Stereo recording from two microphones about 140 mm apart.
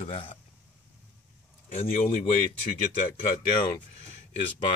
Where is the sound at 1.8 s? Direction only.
65° left (ahead or behind).